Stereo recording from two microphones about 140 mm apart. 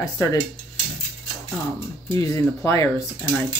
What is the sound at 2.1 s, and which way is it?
Speech, 20° left (ahead or behind).